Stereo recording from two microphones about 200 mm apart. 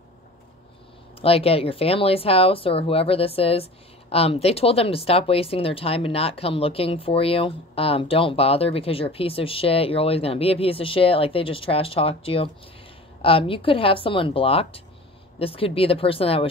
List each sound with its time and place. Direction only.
1.2 s speech: 30° left (ahead or behind)